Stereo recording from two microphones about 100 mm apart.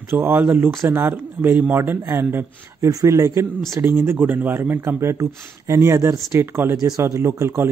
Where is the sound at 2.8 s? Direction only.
35° right (ahead or behind).